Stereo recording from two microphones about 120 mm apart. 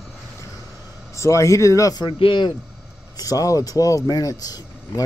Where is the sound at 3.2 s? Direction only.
30° left (ahead or behind).